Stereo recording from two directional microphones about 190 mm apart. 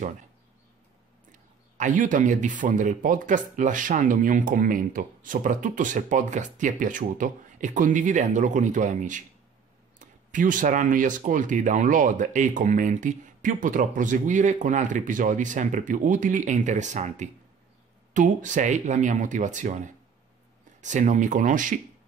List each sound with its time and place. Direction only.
1.3 s speech: 40° right (ahead or behind)